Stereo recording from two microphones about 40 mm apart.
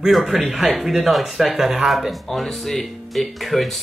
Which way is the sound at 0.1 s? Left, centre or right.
Centre.